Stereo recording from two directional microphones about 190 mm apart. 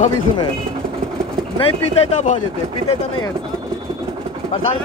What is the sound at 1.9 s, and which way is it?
Speech, 40° left (ahead or behind).